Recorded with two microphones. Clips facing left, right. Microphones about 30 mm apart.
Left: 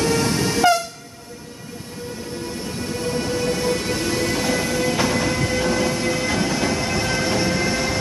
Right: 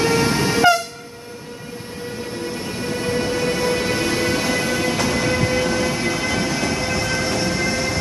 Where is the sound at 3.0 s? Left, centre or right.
Right.